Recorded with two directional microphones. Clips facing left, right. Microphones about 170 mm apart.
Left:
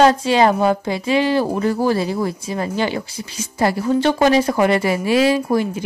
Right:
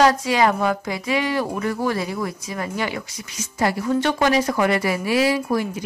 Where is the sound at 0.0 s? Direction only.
30° left (ahead or behind).